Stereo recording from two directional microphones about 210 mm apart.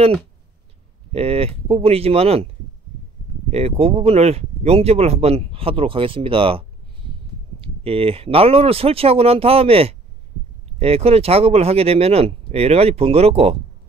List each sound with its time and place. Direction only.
1.1 s speech: 30° right (ahead or behind)
7.6 s speech: 25° right (ahead or behind)